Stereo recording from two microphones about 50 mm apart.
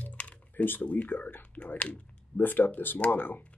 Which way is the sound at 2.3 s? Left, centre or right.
Left.